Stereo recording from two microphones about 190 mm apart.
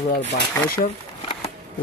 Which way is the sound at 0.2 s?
65° left (ahead or behind).